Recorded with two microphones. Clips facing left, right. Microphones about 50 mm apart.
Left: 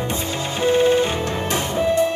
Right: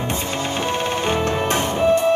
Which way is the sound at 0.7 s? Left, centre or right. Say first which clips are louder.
Left 8 dB; right.